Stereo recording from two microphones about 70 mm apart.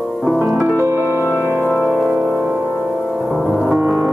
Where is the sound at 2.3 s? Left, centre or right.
Right.